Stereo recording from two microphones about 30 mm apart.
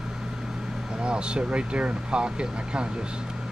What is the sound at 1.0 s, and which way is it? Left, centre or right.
Speech, right.